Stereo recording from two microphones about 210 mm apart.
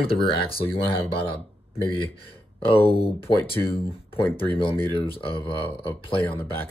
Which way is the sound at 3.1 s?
25° left (ahead or behind).